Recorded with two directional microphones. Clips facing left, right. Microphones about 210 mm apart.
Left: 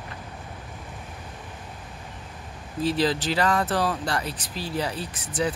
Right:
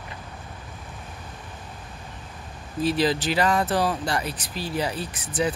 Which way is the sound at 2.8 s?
15° right (ahead or behind).